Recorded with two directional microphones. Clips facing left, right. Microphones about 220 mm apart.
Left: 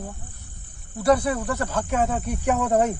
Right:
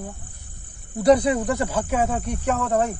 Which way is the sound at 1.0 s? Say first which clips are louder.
Right 3 dB; 15° right (ahead or behind).